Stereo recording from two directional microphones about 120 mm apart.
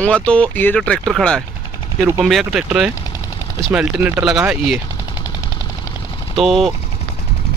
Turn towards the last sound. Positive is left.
turn(degrees=0)  # may be behind; listen again after turning